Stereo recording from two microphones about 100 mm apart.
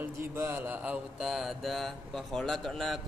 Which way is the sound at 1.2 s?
Centre (ahead or behind).